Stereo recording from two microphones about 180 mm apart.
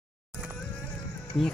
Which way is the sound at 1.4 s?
30° left (ahead or behind).